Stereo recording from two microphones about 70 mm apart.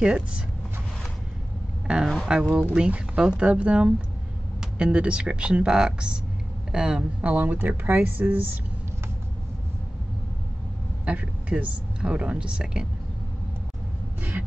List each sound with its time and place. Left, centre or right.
0.0 s speech: centre
1.9 s speech: centre; by 8.4 s right
11.1 s speech: centre